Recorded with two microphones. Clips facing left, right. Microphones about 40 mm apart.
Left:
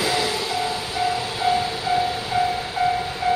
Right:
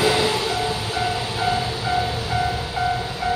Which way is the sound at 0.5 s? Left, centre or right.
Centre.